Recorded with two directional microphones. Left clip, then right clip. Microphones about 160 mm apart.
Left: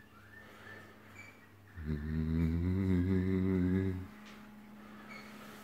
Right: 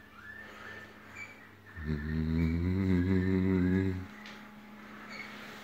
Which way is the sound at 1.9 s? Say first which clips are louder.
Right 3 dB; 5° right (ahead or behind).